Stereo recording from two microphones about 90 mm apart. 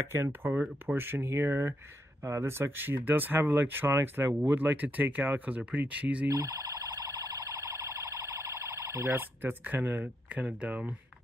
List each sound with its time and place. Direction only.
0.1 s speech: 25° right (ahead or behind)
6.3 s siren: 45° right (ahead or behind)
9.4 s speech: 20° right (ahead or behind)